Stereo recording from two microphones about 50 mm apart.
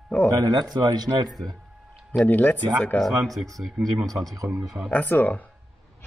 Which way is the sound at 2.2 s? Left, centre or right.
Left.